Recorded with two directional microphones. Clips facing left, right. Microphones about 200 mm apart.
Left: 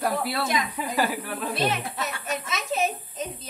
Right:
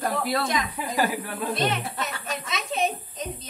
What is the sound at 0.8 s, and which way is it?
Speech, 15° right (ahead or behind).